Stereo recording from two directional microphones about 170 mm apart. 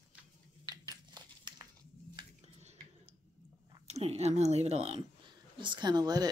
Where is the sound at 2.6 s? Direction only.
40° right (ahead or behind).